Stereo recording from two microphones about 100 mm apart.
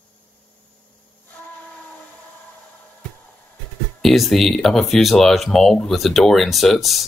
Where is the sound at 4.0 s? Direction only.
Centre (ahead or behind).